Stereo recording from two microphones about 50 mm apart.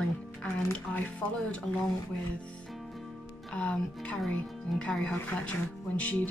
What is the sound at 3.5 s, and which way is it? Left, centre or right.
Speech, left.